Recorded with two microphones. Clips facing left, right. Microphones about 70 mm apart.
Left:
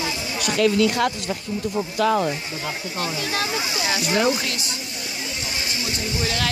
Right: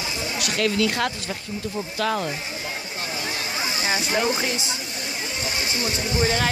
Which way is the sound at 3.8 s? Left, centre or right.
Right.